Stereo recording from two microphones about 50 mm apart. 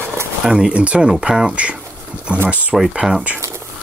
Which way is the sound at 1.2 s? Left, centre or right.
Centre.